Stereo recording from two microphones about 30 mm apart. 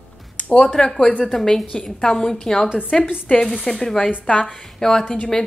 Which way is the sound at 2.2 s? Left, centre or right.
Centre.